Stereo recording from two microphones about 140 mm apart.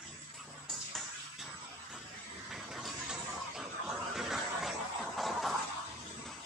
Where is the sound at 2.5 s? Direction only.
Centre (ahead or behind).